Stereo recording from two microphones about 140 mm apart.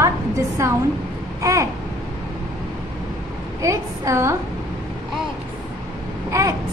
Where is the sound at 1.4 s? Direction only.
20° right (ahead or behind).